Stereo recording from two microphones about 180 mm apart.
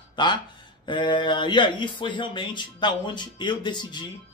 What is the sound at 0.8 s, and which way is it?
Speech, 25° left (ahead or behind).